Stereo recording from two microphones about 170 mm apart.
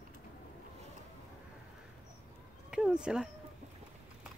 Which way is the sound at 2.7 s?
5° right (ahead or behind).